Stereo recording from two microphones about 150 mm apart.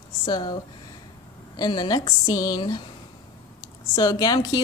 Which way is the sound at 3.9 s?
25° left (ahead or behind).